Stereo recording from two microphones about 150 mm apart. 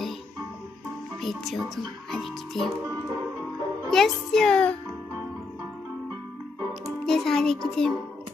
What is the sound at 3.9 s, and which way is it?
Speech, 5° left (ahead or behind).